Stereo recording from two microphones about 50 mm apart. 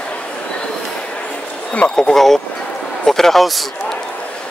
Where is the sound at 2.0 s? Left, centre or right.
Centre.